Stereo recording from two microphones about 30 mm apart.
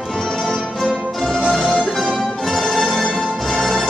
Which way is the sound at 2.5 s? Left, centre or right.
Centre.